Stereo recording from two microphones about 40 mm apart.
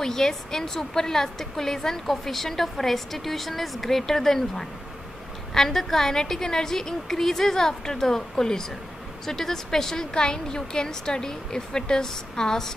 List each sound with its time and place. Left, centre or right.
0.0 s a woman's voice: centre